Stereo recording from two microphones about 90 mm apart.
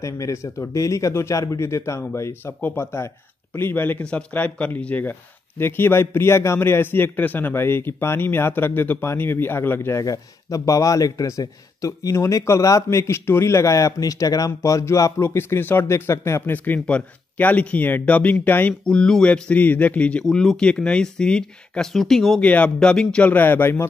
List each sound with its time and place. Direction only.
0.0 s a man's voice: 35° left (ahead or behind)
16.5 s a man's voice: 20° left (ahead or behind)
18.9 s a man's voice: 10° left (ahead or behind)
22.4 s a man's voice: 15° left (ahead or behind)